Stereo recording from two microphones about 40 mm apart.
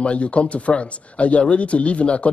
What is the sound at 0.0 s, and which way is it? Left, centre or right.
Speech, left.